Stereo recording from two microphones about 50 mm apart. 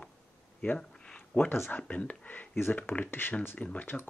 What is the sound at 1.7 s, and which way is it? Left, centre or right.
Speech, left.